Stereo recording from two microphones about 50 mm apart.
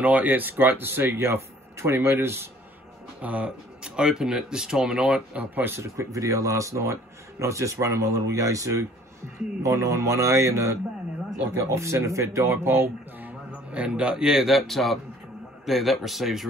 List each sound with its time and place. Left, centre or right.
0.0 s speech: right
3.2 s speech: right
5.5 s speech: right
5.8 s speech: right
11.7 s speech: right
13.7 s speech: right
14.7 s speech: centre